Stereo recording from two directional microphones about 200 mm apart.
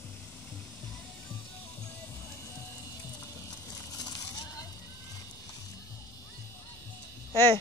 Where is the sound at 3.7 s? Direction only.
20° left (ahead or behind).